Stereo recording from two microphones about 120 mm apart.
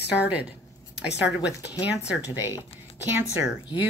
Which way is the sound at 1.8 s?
10° right (ahead or behind).